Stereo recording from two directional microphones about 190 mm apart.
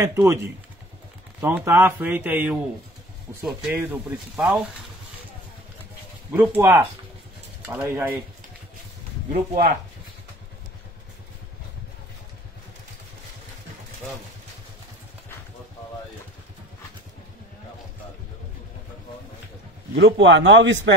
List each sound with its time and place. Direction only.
0.0 s speech: 15° right (ahead or behind)
3.7 s speech: 10° right (ahead or behind)
6.3 s speech: 10° right (ahead or behind)
9.5 s speech: 50° right (ahead or behind)
20.0 s speech: 75° right (ahead or behind)